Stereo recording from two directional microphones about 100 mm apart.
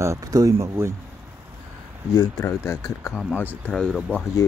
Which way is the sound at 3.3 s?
20° left (ahead or behind).